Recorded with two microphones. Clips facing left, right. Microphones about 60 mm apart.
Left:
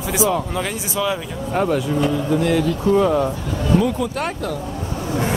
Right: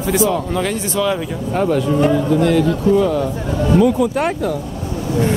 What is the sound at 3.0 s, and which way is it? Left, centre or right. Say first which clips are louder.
Speech: even; centre.